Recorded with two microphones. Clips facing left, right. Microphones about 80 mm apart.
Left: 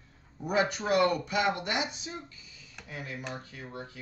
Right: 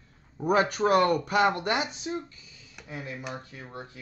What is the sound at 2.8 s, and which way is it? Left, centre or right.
Speech, right.